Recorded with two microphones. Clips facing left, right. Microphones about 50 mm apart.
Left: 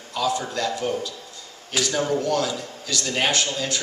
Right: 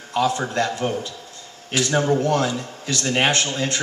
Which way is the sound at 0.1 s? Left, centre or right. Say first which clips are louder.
Right 4 dB; right.